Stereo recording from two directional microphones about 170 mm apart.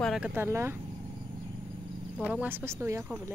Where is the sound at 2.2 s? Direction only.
10° right (ahead or behind).